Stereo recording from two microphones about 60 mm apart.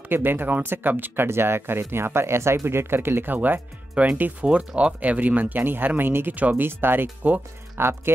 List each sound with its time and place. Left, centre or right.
0.1 s speech: right
7.7 s speech: right